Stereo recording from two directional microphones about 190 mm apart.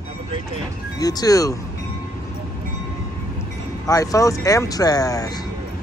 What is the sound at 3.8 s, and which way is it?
Speech, 20° left (ahead or behind).